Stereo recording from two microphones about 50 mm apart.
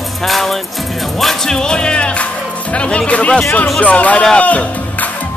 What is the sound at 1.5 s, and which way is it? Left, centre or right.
Speech, centre.